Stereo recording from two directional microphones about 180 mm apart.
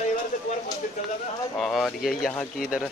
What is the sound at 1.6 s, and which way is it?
Speech, centre (ahead or behind).